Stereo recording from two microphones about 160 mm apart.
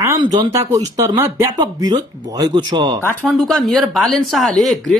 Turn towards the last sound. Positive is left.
turn(degrees=0)  # may be behind; listen again after turning